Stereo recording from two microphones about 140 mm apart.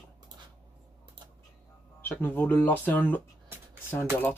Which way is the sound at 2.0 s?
15° left (ahead or behind).